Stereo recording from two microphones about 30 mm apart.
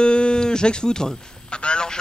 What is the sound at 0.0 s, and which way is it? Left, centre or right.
Music, left.